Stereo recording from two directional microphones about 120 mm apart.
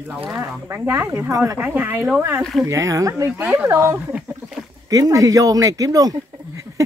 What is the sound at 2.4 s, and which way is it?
Speech, centre (ahead or behind).